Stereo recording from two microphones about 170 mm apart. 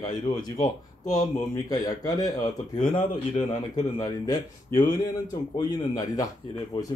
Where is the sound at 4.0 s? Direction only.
20° left (ahead or behind).